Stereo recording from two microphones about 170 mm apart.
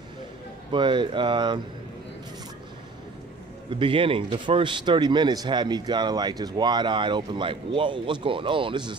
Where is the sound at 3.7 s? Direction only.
30° right (ahead or behind).